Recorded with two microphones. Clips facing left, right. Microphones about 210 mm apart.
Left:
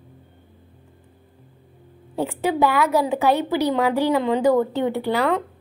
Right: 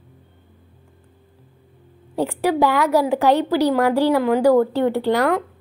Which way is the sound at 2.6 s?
15° right (ahead or behind).